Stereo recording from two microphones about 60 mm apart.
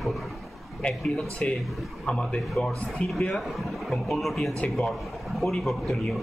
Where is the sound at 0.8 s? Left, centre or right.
Centre.